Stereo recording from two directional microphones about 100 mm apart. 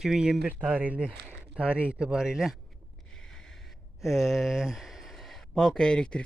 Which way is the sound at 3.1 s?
5° left (ahead or behind).